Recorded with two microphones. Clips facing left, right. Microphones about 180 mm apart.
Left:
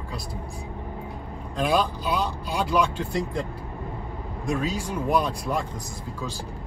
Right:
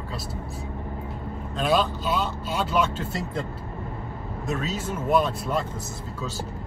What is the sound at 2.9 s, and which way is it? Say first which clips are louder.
Speech: left 3 dB; 15° left (ahead or behind).